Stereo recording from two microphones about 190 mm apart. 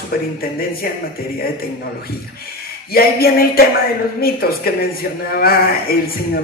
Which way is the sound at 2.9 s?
50° left (ahead or behind).